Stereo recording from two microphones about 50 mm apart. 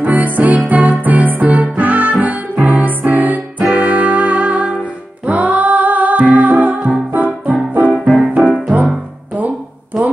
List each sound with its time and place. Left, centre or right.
0.0 s music: right
2.8 s music: right
7.9 s music: centre